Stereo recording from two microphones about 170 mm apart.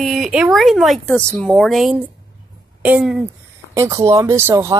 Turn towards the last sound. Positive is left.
turn(degrees=-15)  # may be behind; listen again after turning